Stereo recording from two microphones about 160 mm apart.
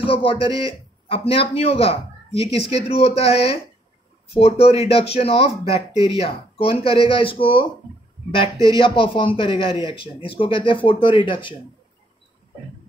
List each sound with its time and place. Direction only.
0.0 s a man's voice: 35° left (ahead or behind)